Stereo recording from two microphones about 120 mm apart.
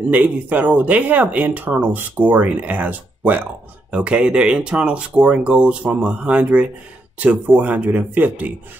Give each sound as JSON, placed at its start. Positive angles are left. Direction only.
{"t": 0.1, "sound": "speech", "side_deg": -10}